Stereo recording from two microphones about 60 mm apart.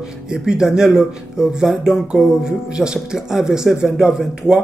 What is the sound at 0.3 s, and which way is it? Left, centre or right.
Speech, centre.